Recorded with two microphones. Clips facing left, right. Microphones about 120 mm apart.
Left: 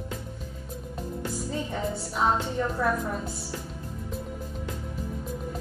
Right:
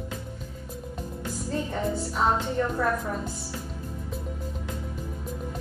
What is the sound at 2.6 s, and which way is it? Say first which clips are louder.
Speech: right 2 dB; 10° left (ahead or behind).